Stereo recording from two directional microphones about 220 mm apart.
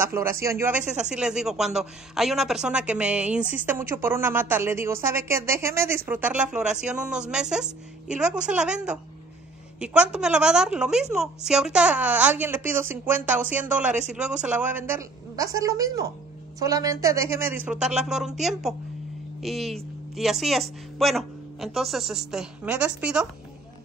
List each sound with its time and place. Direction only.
0.0 s a woman's voice: 10° right (ahead or behind)